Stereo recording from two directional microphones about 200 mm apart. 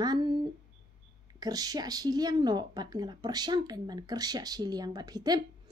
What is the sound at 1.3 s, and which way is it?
Speech, 20° right (ahead or behind).